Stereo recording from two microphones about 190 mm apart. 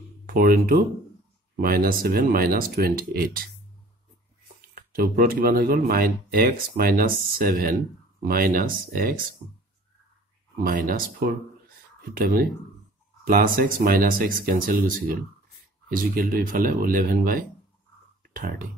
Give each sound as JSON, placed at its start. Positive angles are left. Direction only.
{"t": 0.3, "sound": "speech", "side_deg": -50}
{"t": 4.7, "sound": "speech", "side_deg": -50}
{"t": 10.6, "sound": "speech", "side_deg": -45}
{"t": 15.9, "sound": "speech", "side_deg": -50}